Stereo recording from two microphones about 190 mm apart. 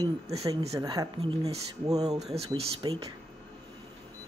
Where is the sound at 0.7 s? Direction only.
20° right (ahead or behind).